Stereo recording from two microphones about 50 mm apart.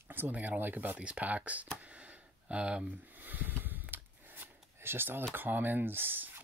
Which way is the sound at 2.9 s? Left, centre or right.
Right.